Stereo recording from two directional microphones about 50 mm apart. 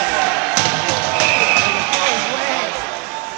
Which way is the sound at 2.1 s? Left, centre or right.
Centre.